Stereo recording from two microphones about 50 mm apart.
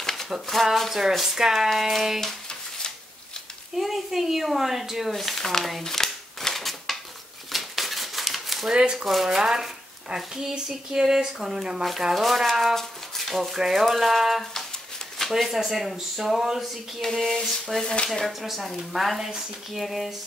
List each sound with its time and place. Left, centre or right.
0.0 s a sound: centre
0.3 s speech: centre
3.7 s speech: centre
5.1 s scissors: centre
7.5 s a sound: centre
8.7 s speech: centre
9.0 s speech: centre
12.7 s a sound: centre
13.6 s speech: centre
17.0 s speech: centre
18.2 s speech: centre